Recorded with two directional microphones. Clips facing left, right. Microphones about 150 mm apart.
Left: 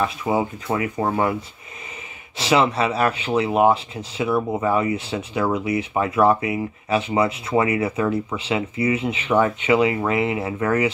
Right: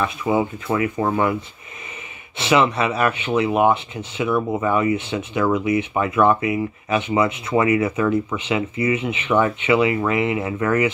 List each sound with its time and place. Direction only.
0.0 s speech: 30° left (ahead or behind)
2.3 s speech: 35° left (ahead or behind)